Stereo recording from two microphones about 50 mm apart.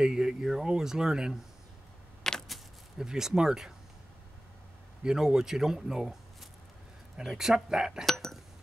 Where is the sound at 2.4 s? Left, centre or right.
Centre.